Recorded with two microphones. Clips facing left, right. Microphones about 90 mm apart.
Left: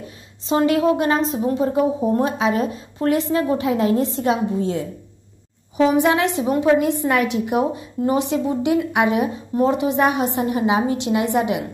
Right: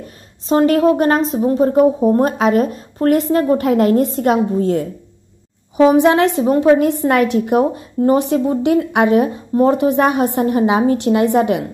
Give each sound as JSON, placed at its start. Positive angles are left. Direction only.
{"t": 0.0, "sound": "a woman's voice", "side_deg": -45}
{"t": 2.2, "sound": "a woman's voice", "side_deg": -55}
{"t": 6.4, "sound": "a woman's voice", "side_deg": -45}